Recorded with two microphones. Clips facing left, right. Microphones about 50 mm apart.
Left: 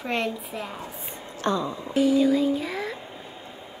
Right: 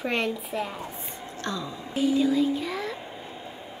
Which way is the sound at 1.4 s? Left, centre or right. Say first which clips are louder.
Left 7 dB; left.